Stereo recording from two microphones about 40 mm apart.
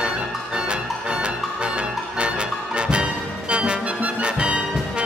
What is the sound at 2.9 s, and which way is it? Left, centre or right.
Music, right.